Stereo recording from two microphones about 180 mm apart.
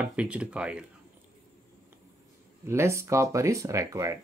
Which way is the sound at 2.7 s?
15° right (ahead or behind).